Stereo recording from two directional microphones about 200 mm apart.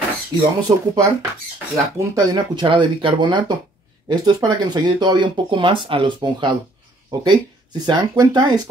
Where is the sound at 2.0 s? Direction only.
20° right (ahead or behind).